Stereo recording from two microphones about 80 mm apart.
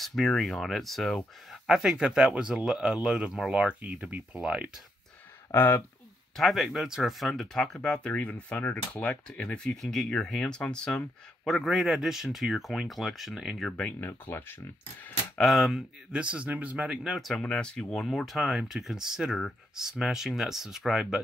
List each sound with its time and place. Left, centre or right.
0.0 s speech: centre
1.8 s speech: centre
5.5 s speech: left
6.3 s speech: centre
13.7 s speech: centre
13.9 s speech: left
15.3 s speech: centre
16.1 s speech: centre
17.5 s speech: centre